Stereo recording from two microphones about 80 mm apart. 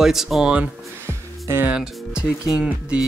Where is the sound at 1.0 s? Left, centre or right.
Right.